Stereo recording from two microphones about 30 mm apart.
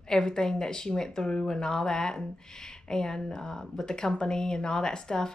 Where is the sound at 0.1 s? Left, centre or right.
Left.